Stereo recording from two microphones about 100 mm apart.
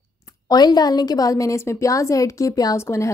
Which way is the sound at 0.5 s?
45° left (ahead or behind).